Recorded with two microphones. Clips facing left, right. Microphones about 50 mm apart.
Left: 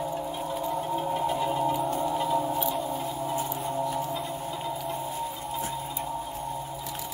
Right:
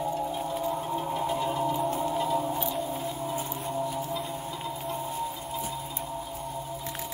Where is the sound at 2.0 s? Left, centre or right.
Centre.